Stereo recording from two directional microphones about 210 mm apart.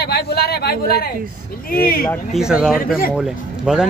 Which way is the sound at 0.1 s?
50° left (ahead or behind).